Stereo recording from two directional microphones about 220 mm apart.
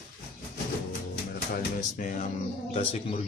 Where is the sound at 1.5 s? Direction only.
40° left (ahead or behind).